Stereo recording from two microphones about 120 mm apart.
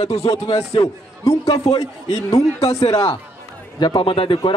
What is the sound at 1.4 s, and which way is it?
Speech, 35° left (ahead or behind).